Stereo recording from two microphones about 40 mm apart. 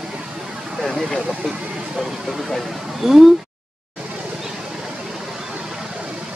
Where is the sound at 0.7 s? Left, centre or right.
Centre.